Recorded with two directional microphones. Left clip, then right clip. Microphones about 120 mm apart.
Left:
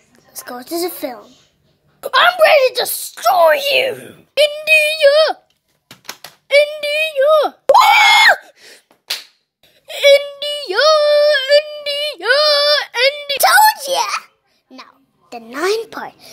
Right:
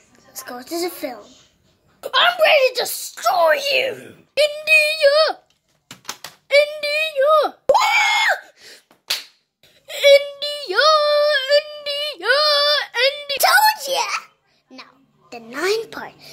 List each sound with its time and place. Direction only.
0.1 s a woman's voice: 35° left (ahead or behind)
2.2 s speech: 35° left (ahead or behind); by 4.2 s 60° left (ahead or behind)
4.6 s child singing: 40° left (ahead or behind)
6.8 s a sound: 30° left (ahead or behind)
7.7 s screaming: 55° left (ahead or behind)
8.0 s screaming: 90° left
9.8 s a sound: 25° left (ahead or behind); by 14.3 s 40° left (ahead or behind)
15.5 s speech: 40° left (ahead or behind)
15.8 s speech: 25° left (ahead or behind)